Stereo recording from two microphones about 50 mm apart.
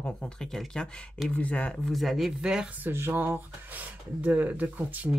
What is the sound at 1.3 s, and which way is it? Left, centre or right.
Speech, left.